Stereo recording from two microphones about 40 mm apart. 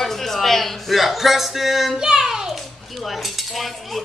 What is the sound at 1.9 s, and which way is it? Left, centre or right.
Child singing, centre.